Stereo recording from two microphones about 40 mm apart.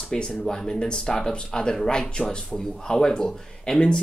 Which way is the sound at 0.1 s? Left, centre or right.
Centre.